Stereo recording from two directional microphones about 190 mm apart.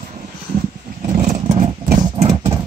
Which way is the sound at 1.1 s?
35° right (ahead or behind).